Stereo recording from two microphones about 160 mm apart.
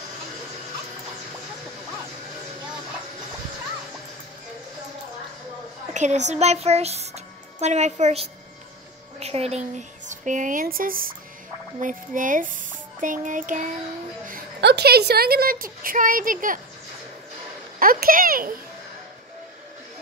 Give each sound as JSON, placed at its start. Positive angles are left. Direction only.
{"t": 5.9, "sound": "a woman's voice", "side_deg": -45}
{"t": 14.2, "sound": "a woman's voice", "side_deg": -75}
{"t": 17.7, "sound": "a woman's voice", "side_deg": -60}